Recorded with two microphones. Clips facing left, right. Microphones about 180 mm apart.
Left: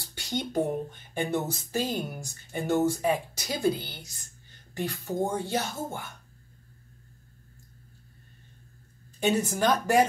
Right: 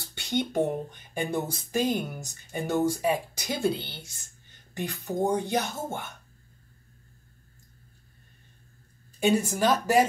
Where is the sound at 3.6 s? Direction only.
25° right (ahead or behind).